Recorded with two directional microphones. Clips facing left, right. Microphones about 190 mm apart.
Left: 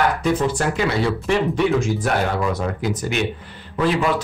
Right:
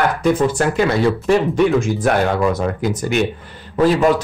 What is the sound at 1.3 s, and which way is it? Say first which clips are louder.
Speech: right 4 dB; 50° right (ahead or behind).